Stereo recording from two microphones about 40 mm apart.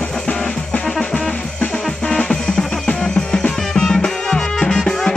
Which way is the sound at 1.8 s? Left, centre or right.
Centre.